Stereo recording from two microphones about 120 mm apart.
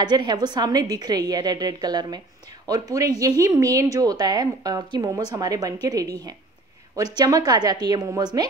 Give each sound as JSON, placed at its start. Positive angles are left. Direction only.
{"t": 0.0, "sound": "speech", "side_deg": -35}